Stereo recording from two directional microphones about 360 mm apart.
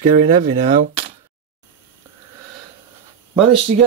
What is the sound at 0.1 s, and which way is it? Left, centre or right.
Speech, right.